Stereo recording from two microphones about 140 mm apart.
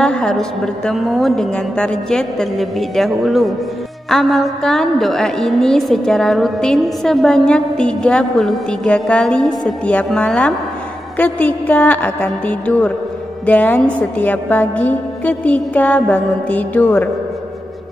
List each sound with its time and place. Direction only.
0.0 s a woman's voice: 5° left (ahead or behind)